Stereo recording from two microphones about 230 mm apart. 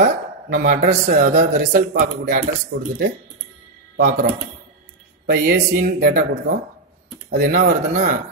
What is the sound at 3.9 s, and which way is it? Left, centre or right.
Speech, right.